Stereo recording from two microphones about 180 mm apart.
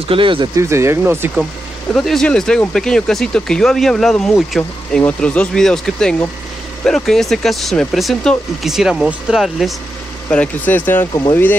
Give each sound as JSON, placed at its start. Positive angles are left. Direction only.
{"t": 0.1, "sound": "speech", "side_deg": -30}
{"t": 0.6, "sound": "speech", "side_deg": -15}
{"t": 1.9, "sound": "speech", "side_deg": 5}